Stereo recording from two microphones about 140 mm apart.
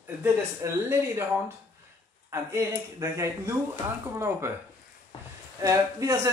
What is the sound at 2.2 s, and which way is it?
Speech, 20° right (ahead or behind).